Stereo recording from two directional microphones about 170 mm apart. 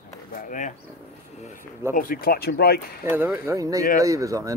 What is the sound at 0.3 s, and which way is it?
Speech, 50° left (ahead or behind).